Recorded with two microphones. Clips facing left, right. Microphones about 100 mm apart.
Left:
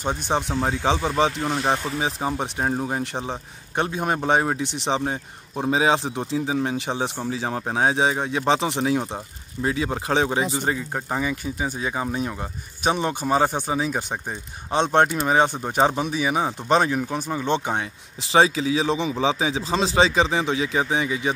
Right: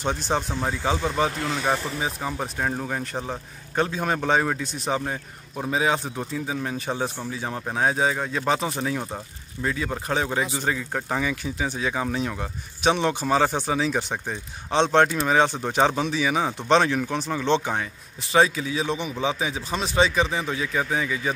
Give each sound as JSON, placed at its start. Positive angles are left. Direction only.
{"t": 0.3, "sound": "speech", "side_deg": 20}
{"t": 10.6, "sound": "speech", "side_deg": 15}
{"t": 18.3, "sound": "speech", "side_deg": 30}